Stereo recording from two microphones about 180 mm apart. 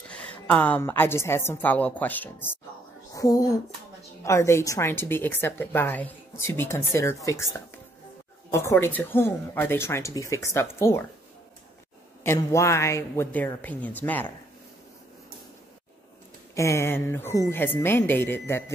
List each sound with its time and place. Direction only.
0.1 s a woman's voice: 5° left (ahead or behind)
8.5 s a woman's voice: 15° left (ahead or behind)
12.2 s a woman's voice: 15° left (ahead or behind)
16.5 s a woman's voice: 15° left (ahead or behind)